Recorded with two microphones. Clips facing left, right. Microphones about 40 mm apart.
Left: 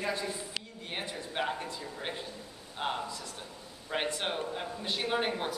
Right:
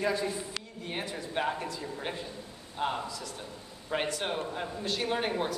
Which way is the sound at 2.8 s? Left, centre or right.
Centre.